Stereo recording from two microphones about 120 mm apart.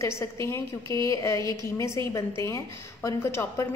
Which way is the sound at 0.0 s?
25° left (ahead or behind).